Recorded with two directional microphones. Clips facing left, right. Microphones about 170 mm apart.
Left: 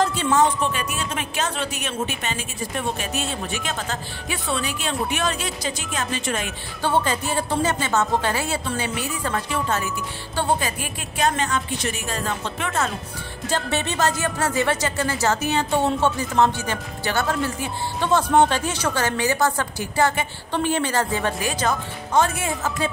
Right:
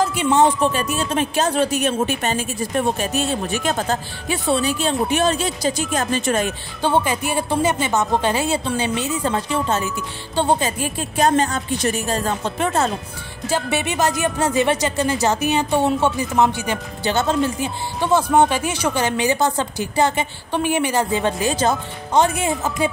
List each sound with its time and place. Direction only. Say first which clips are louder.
0.0 s music: right 2 dB; 10° right (ahead or behind)
0.3 s speech: right 6 dB; 30° right (ahead or behind)
6.8 s a woman's voice: right 3 dB; 15° right (ahead or behind); by 12.9 s 35° right (ahead or behind)
13.5 s speech: right 3 dB; 10° right (ahead or behind)